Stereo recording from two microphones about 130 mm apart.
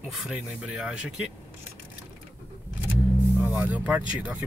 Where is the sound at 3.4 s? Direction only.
10° right (ahead or behind).